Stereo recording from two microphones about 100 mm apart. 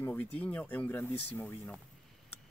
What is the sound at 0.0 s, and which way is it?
Speech, 15° left (ahead or behind).